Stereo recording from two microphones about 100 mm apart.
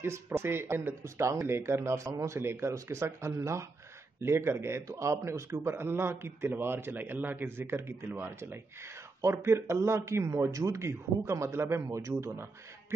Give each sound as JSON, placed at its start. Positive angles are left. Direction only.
{"t": 0.0, "sound": "a man's voice", "side_deg": -25}